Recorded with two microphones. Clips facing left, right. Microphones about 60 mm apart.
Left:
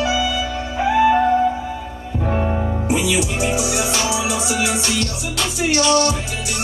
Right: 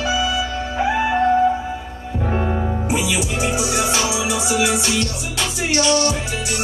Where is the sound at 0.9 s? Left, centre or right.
Centre.